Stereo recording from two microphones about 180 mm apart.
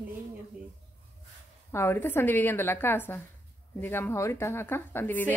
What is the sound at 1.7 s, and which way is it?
A woman's voice, 15° left (ahead or behind).